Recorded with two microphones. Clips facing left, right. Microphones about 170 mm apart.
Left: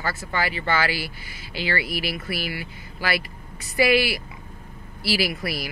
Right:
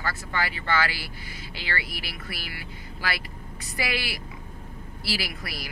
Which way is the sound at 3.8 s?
75° left (ahead or behind).